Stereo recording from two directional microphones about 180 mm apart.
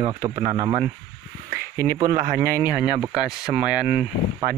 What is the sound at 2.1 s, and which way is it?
Speech, 55° right (ahead or behind).